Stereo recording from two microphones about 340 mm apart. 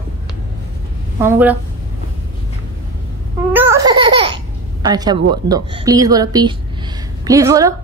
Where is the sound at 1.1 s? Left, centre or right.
Centre.